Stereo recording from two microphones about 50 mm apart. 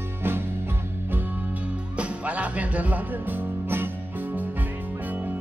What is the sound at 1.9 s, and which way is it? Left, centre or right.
Music, right.